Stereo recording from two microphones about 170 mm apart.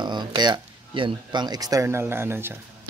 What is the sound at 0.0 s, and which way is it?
Speech, 25° right (ahead or behind).